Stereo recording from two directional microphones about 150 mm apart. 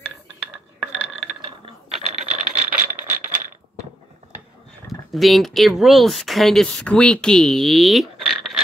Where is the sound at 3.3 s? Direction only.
60° right (ahead or behind).